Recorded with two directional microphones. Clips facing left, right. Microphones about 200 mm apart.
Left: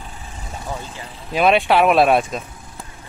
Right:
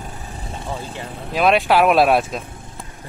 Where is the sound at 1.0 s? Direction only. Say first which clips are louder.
Right 5 dB; 55° right (ahead or behind).